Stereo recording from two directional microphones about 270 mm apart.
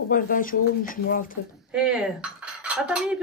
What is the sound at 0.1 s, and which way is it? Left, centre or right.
Speech, left.